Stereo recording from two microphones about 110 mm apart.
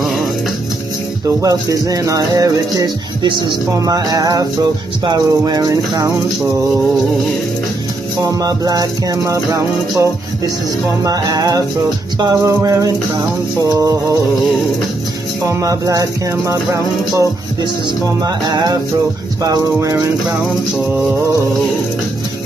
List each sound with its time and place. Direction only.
1.2 s music: 35° right (ahead or behind)
8.2 s music: 30° right (ahead or behind)
15.4 s music: 30° right (ahead or behind)